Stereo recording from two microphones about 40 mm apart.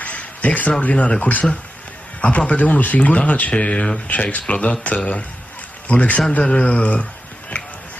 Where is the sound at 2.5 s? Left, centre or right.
Left.